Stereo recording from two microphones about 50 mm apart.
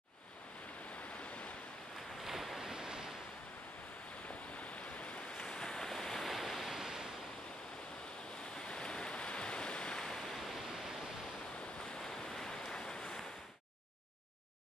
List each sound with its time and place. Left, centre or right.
2.2 s waves: centre
4.6 s waves: left
5.4 s waves: centre
8.5 s waves: centre